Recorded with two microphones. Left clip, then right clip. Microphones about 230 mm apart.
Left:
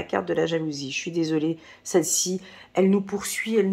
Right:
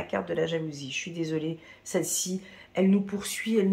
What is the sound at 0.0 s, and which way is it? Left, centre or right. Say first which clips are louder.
Speech: left 4 dB; left.